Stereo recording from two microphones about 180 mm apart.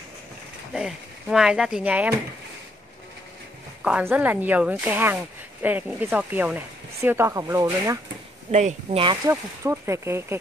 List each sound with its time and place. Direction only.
0.7 s speech: 5° right (ahead or behind)
3.8 s speech: 10° right (ahead or behind)
8.5 s speech: 40° right (ahead or behind)
9.3 s speech: 15° right (ahead or behind)